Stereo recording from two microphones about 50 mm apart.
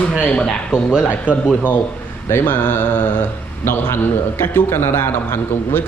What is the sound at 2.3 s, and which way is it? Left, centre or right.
Speech, left.